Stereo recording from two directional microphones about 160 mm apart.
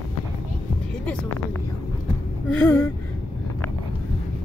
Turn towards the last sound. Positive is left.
turn(degrees=10)  # may be behind; listen again after turning